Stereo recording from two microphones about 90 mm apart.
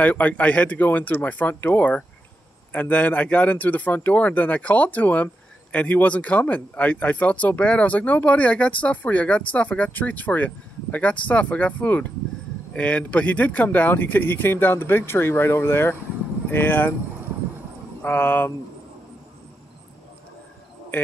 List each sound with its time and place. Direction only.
0.0 s speech: 15° left (ahead or behind)
18.0 s speech: 20° left (ahead or behind)